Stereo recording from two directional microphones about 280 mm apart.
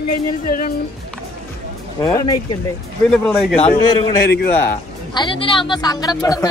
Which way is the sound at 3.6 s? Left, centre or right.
Centre.